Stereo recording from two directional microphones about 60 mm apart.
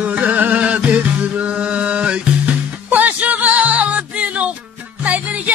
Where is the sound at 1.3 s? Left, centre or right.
Right.